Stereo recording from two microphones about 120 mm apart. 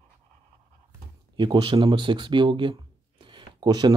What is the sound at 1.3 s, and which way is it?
Speech, 40° right (ahead or behind).